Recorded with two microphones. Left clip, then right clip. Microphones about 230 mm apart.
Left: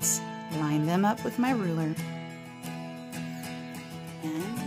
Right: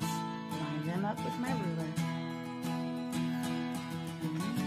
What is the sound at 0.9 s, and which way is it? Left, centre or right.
Speech, left.